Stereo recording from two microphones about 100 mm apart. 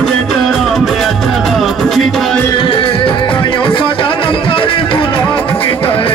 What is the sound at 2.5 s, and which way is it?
Music, 60° left (ahead or behind).